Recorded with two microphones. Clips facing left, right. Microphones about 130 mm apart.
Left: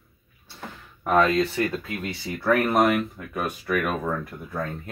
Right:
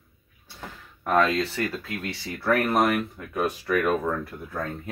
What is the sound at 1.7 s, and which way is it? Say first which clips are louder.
Speech: left 2 dB; centre (ahead or behind).